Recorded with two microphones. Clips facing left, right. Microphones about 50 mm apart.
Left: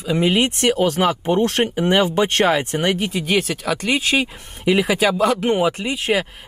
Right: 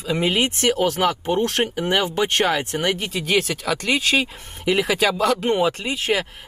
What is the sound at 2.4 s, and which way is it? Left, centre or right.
Speech, left.